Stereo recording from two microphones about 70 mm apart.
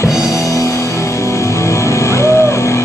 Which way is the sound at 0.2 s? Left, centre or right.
Left.